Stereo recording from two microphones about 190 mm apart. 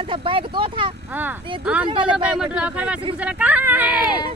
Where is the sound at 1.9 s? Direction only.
25° right (ahead or behind).